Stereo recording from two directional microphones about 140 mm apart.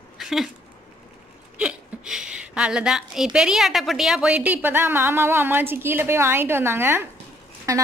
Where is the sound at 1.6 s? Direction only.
5° right (ahead or behind).